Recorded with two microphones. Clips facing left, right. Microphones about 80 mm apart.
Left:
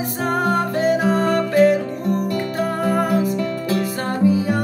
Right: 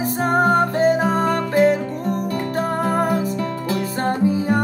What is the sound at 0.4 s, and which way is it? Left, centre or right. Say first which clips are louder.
Music: right 3 dB; right.